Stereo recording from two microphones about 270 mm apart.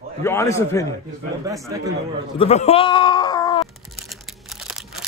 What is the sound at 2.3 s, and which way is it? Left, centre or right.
Speech, left.